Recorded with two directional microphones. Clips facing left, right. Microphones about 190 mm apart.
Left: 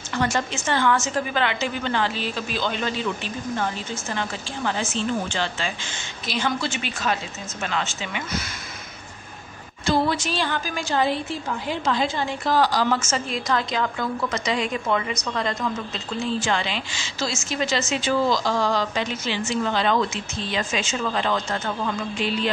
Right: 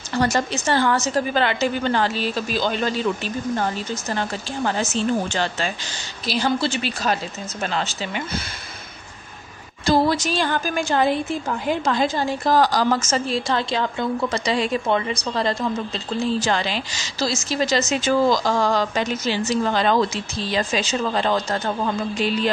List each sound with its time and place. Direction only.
0.1 s a woman's voice: 35° right (ahead or behind)
9.8 s a woman's voice: 40° right (ahead or behind)